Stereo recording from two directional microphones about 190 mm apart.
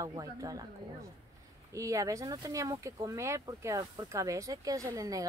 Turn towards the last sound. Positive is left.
turn(degrees=-20)  # may be behind; listen again after turning